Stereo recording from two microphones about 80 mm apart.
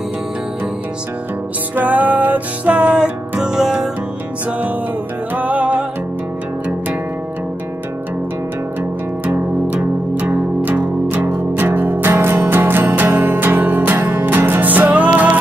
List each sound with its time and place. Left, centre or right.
1.8 s music: centre
4.5 s music: centre
9.2 s music: right